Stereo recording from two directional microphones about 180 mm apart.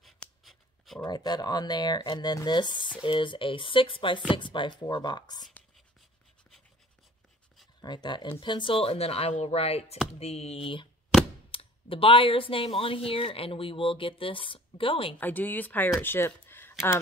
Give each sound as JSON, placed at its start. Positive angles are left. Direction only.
{"t": 0.0, "sound": "writing", "side_deg": 0}
{"t": 1.0, "sound": "speech", "side_deg": 20}
{"t": 7.8, "sound": "speech", "side_deg": 25}
{"t": 15.1, "sound": "speech", "side_deg": 10}